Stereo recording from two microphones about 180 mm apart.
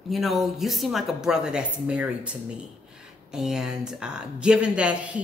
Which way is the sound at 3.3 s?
5° right (ahead or behind).